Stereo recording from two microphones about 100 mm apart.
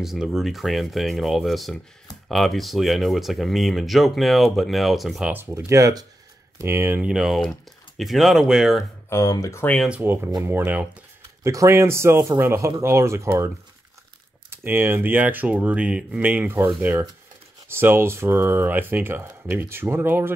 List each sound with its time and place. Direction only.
0.0 s speech: 5° right (ahead or behind)
5.3 s speech: 20° right (ahead or behind)
5.7 s speech: 35° right (ahead or behind)
7.0 s speech: 5° right (ahead or behind)
9.1 s speech: 35° left (ahead or behind)
10.4 s speech: 20° right (ahead or behind)
11.2 s speech: 30° right (ahead or behind)
14.5 s speech: 20° right (ahead or behind)